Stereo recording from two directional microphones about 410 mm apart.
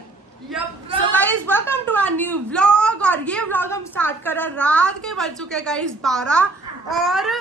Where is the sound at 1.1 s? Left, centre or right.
Centre.